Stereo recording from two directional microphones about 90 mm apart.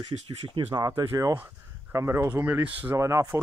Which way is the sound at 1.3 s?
30° right (ahead or behind).